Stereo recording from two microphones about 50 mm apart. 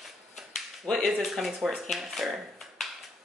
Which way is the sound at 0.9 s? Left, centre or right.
Centre.